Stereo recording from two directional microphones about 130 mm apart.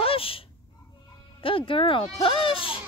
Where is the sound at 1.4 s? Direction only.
45° left (ahead or behind).